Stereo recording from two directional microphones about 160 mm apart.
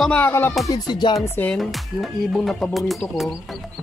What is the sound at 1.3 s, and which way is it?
Speech, 5° left (ahead or behind).